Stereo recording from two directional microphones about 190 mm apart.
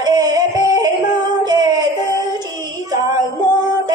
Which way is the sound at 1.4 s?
20° right (ahead or behind).